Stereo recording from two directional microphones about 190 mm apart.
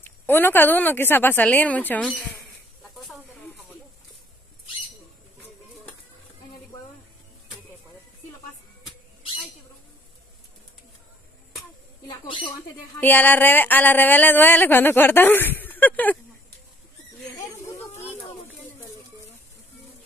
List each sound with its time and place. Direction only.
0.0 s speech: 10° left (ahead or behind)
12.1 s speech: 25° left (ahead or behind)
13.0 s speech: 10° left (ahead or behind)
17.4 s snake: 15° left (ahead or behind)